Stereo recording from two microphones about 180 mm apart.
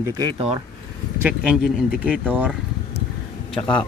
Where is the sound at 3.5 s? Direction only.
25° left (ahead or behind).